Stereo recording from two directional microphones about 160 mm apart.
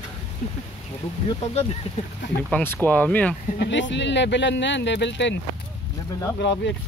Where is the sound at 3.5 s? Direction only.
90° left.